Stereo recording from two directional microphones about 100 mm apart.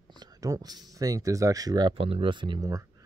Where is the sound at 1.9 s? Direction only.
65° right (ahead or behind).